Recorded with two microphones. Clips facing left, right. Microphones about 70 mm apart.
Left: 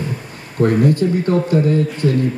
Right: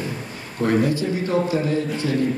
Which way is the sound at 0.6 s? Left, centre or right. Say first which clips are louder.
Left 5 dB; left.